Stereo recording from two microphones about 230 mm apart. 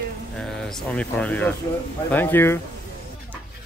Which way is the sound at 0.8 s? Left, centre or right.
Centre.